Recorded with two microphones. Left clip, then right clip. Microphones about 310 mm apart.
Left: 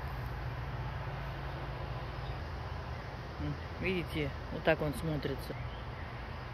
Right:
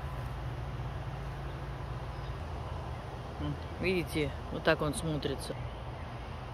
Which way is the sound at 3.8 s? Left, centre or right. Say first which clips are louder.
Right 4 dB; centre.